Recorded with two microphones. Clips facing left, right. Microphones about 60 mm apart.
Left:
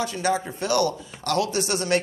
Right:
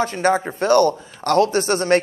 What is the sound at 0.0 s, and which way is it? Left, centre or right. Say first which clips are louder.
A man's voice: right 6 dB; right.